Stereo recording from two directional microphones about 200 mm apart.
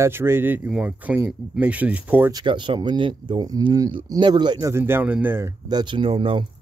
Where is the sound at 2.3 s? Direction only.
25° right (ahead or behind).